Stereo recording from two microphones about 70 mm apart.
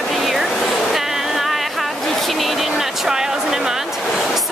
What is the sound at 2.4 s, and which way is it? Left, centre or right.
Vehicle, centre.